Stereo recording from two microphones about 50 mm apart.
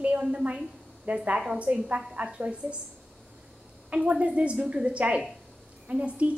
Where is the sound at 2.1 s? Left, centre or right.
Right.